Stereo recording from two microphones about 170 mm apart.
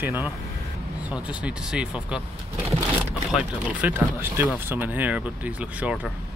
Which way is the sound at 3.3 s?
10° right (ahead or behind).